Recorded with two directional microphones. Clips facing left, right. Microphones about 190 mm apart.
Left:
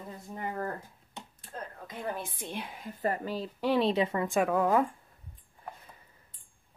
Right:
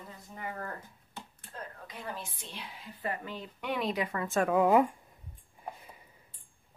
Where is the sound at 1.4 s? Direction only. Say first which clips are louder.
Left 4 dB; 45° left (ahead or behind); by 4.3 s 25° left (ahead or behind).